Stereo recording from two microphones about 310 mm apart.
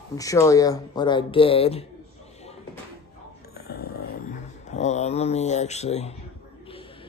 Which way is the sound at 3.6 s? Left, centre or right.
Left.